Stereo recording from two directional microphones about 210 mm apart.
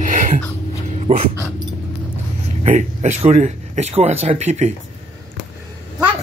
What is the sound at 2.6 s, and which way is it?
Speech, 35° right (ahead or behind).